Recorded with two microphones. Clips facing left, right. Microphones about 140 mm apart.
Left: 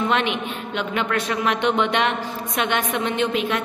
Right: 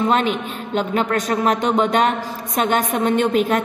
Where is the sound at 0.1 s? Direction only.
40° right (ahead or behind).